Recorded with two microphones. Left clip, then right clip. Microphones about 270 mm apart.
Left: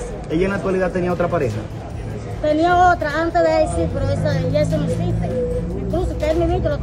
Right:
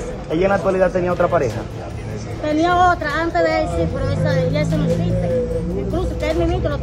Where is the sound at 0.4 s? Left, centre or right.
Left.